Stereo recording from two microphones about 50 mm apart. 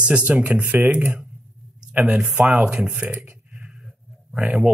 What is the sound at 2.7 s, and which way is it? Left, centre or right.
Speech, centre.